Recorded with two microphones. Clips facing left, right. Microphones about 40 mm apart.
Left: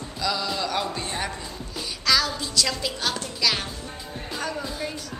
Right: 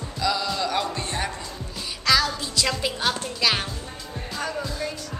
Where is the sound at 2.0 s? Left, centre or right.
Centre.